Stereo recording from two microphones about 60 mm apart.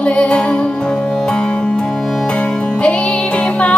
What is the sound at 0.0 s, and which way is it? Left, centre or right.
Music, left.